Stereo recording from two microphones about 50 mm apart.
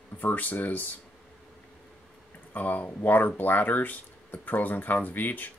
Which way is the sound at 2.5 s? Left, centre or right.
Left.